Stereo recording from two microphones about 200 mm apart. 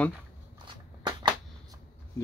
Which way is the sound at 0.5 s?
20° right (ahead or behind).